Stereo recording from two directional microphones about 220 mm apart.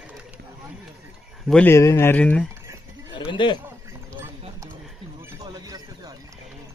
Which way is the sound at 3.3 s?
20° left (ahead or behind).